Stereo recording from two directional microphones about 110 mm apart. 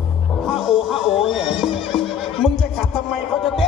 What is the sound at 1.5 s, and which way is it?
Horse, centre (ahead or behind).